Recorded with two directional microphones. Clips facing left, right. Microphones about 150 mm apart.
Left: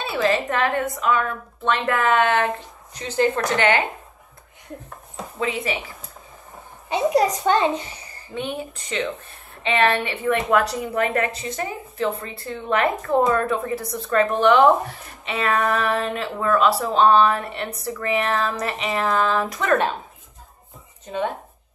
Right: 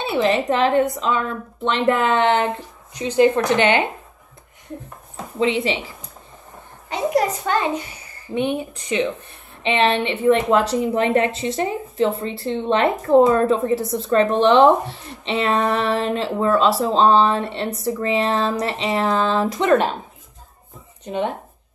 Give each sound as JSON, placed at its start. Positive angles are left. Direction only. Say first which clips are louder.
{"t": 0.0, "sound": "a woman's voice", "louder": "right 3 dB", "side_deg": -20}
{"t": 5.4, "sound": "a woman's voice", "louder": "right 6 dB", "side_deg": -25}
{"t": 7.4, "sound": "a child's voice", "louder": "left 2 dB", "side_deg": 25}
{"t": 8.4, "sound": "a woman's voice", "louder": "right 6 dB", "side_deg": -20}